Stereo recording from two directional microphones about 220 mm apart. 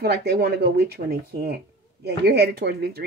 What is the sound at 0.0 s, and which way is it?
Speech, 45° right (ahead or behind).